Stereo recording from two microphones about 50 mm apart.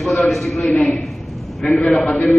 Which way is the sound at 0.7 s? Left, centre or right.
Left.